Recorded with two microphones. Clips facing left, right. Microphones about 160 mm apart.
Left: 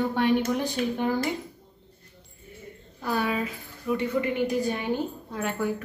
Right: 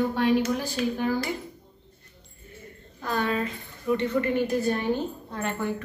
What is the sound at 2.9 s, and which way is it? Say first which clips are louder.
A woman's voice: even; 10° left (ahead or behind).